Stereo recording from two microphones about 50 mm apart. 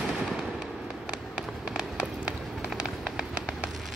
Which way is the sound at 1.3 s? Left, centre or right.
Centre.